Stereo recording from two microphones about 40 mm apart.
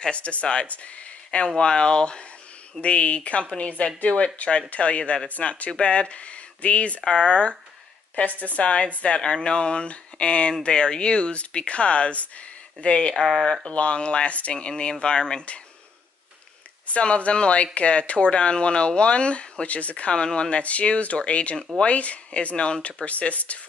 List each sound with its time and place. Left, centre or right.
0.1 s speech: left
8.2 s speech: left
13.1 s speech: centre
13.7 s speech: left
16.8 s speech: left